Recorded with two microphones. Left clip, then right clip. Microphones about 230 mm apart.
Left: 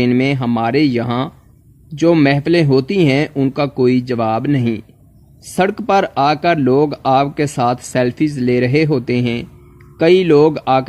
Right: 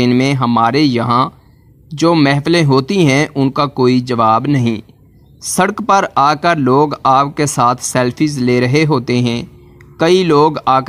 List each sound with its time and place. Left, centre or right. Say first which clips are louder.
0.0 s speech: right 2 dB; centre